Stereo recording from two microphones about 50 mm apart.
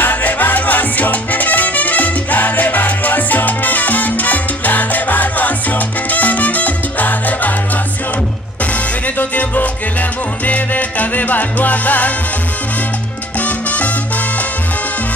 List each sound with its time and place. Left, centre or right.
0.0 s salsa music: left
9.2 s music: left
10.4 s salsa music: left
13.4 s salsa music: left